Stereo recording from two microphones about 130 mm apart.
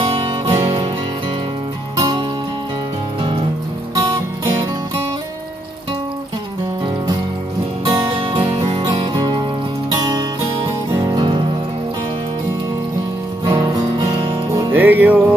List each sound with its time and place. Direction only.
0.0 s music: 50° right (ahead or behind)
2.0 s music: 35° right (ahead or behind)
7.9 s music: 40° right (ahead or behind)
8.8 s music: 30° right (ahead or behind)
11.1 s music: 35° right (ahead or behind)
13.5 s music: 35° right (ahead or behind)
14.5 s music: 25° right (ahead or behind)
14.8 s music: 15° right (ahead or behind)